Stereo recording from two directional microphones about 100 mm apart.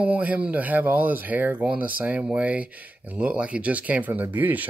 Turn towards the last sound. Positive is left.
turn(degrees=-15)  # may be behind; listen again after turning